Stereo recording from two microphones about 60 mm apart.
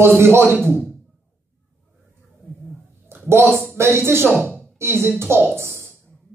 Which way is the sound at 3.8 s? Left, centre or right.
Right.